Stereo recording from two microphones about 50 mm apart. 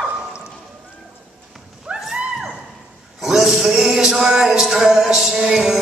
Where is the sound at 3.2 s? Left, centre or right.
Centre.